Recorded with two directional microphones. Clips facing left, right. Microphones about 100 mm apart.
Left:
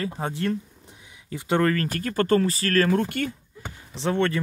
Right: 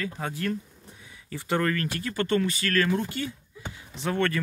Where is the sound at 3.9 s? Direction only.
25° left (ahead or behind).